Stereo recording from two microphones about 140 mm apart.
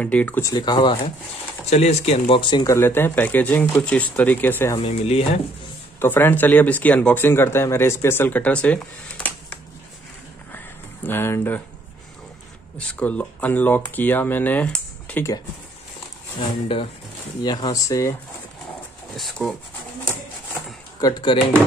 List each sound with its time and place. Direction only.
0.0 s speech: 10° left (ahead or behind)
0.4 s speech: 25° left (ahead or behind)
1.7 s speech: 50° left (ahead or behind)
2.2 s speech: 35° left (ahead or behind)
2.7 s speech: 15° left (ahead or behind)
4.7 s speech: 45° left (ahead or behind)
5.9 s speech: 15° left (ahead or behind)
11.1 s speech: 15° left (ahead or behind)
12.7 s speech: 10° left (ahead or behind)
16.3 s speech: 40° left (ahead or behind); by 18.1 s 25° left (ahead or behind)
19.1 s speech: centre (ahead or behind)
21.0 s speech: 35° left (ahead or behind)